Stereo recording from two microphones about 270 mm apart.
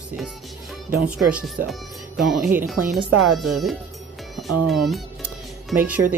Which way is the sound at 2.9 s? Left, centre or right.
Centre.